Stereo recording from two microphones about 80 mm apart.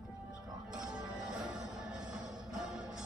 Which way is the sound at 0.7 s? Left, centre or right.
Centre.